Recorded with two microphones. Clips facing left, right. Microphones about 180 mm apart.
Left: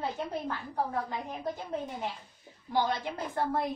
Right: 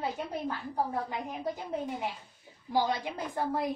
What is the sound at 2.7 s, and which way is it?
Speech, 10° right (ahead or behind).